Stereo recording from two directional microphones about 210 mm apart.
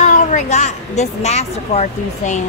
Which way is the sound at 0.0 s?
35° left (ahead or behind).